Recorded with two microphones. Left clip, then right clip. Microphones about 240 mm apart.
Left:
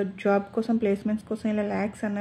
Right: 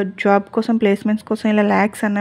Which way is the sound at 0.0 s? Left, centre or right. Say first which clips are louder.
Right 8 dB; right.